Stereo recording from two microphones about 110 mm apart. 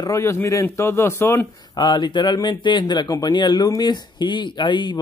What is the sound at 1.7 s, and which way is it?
A man's voice, 45° left (ahead or behind).